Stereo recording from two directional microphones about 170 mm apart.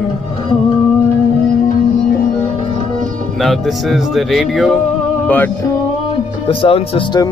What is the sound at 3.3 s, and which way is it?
Speech, centre (ahead or behind).